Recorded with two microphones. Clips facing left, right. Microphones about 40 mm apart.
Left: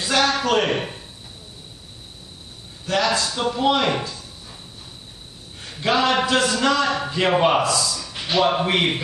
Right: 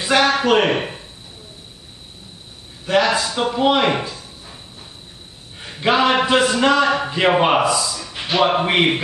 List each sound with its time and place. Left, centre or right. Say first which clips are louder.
0.0 s a man's voice: right 4 dB; centre
2.8 s speech: right 4 dB; centre
5.6 s a man's voice: right 3 dB; centre